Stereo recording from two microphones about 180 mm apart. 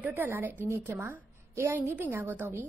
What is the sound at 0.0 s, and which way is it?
A woman's voice, 10° right (ahead or behind).